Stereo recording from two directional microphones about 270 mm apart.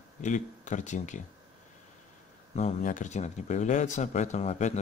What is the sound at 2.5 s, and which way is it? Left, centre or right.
Speech, left.